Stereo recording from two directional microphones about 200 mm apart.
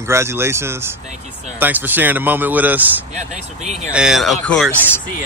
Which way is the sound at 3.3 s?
35° right (ahead or behind).